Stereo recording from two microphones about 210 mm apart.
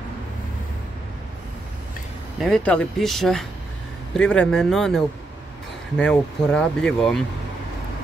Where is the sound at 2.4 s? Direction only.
5° left (ahead or behind).